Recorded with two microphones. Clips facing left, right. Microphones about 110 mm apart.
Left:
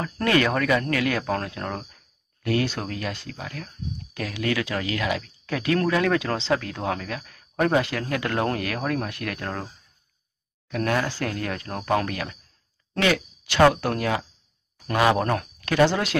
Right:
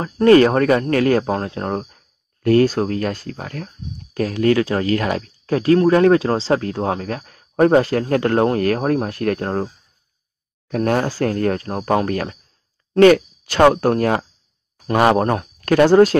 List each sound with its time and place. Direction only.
0.0 s speech: 35° right (ahead or behind)
10.7 s speech: 40° right (ahead or behind)